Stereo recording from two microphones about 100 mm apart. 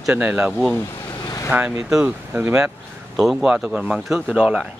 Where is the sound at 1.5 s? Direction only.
10° right (ahead or behind).